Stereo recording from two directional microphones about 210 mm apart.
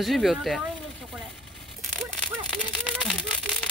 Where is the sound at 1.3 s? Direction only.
Centre (ahead or behind).